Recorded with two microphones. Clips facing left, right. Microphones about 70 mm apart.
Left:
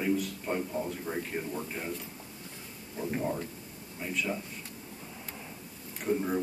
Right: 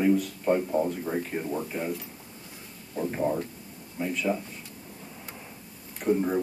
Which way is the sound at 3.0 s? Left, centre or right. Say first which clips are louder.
Right 5 dB; centre.